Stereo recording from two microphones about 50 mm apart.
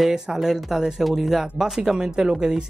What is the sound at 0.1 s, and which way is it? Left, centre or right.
Speech, centre.